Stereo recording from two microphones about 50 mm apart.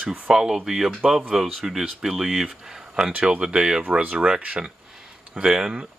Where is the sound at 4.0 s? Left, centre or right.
Right.